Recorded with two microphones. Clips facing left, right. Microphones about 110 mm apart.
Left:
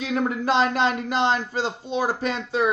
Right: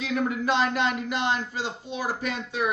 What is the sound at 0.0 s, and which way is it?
A man's voice, 35° left (ahead or behind).